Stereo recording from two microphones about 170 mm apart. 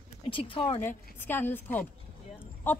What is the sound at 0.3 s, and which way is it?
Speech, 30° left (ahead or behind).